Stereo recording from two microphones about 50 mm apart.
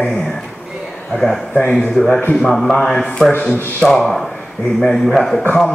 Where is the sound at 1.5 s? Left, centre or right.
Left.